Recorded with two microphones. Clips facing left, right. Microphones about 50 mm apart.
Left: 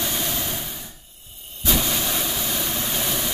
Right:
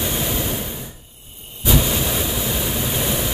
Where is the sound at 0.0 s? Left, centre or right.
Centre.